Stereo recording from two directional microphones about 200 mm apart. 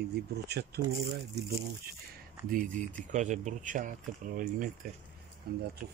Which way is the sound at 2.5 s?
40° right (ahead or behind).